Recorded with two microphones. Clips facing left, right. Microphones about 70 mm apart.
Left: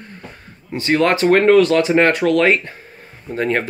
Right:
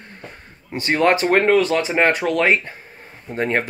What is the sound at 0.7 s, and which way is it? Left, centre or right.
Speech, right.